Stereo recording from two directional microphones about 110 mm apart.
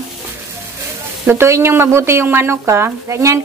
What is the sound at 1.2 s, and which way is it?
Speech, 25° right (ahead or behind).